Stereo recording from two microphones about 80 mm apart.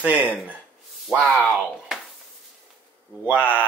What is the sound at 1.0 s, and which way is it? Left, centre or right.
Speech, centre.